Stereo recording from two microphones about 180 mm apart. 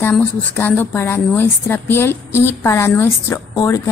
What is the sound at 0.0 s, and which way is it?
A woman's voice, 10° left (ahead or behind).